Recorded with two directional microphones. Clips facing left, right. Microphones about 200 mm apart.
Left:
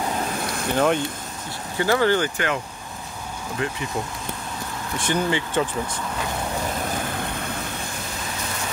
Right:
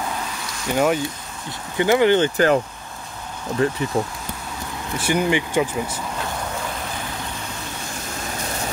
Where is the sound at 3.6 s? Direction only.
35° right (ahead or behind).